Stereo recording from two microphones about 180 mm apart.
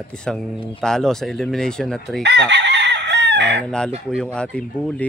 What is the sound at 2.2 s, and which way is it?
Chicken, 70° right (ahead or behind).